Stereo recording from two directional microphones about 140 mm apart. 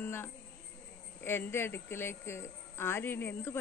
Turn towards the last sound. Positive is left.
turn(degrees=15)  # may be behind; listen again after turning